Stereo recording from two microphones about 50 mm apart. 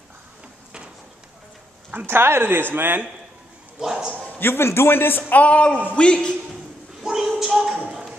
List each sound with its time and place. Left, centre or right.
2.0 s speech: right
3.8 s a man's voice: centre
4.4 s a man's voice: left
5.3 s a man's voice: left
7.0 s a sound: centre